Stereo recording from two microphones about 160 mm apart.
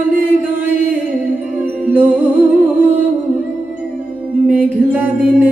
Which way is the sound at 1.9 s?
10° right (ahead or behind).